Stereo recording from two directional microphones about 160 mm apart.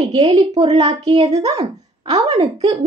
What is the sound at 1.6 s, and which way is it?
Speech, 25° right (ahead or behind).